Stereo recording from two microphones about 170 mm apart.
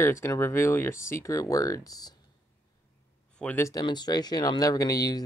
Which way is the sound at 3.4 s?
10° left (ahead or behind).